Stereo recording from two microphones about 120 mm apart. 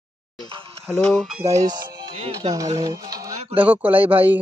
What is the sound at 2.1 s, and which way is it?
Speech, 55° right (ahead or behind).